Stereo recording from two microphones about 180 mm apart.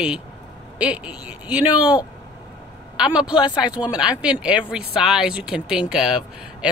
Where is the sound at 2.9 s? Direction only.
5° right (ahead or behind).